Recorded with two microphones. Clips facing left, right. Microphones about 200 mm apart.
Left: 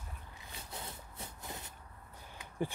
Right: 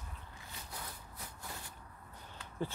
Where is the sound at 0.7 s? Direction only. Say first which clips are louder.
Left 2 dB; 25° left (ahead or behind).